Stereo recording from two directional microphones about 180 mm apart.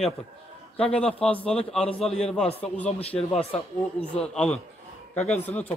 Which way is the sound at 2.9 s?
35° left (ahead or behind).